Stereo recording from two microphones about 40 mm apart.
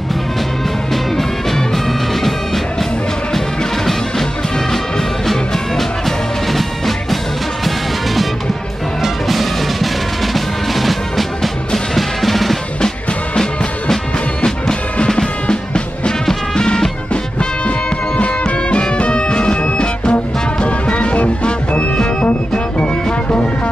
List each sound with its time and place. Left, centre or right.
1.1 s music: centre
4.9 s music: centre
9.0 s music: centre
14.4 s music: centre